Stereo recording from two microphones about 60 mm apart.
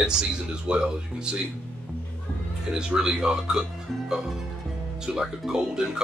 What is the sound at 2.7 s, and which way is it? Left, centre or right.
Speech, centre.